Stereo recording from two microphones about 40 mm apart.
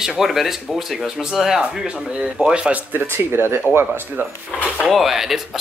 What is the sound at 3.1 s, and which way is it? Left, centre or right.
Speech, right.